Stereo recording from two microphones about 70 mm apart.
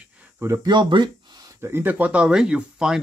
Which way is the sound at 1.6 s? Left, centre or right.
Right.